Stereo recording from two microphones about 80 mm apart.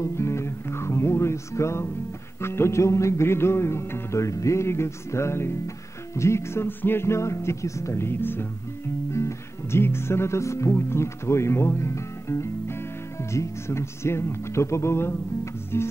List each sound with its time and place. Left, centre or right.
0.0 s music: left